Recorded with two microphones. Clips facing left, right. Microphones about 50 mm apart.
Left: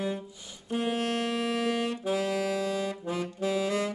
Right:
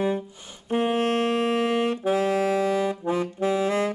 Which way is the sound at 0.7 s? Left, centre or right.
Right.